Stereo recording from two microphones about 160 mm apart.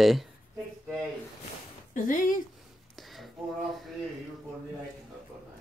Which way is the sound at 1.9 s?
55° left (ahead or behind).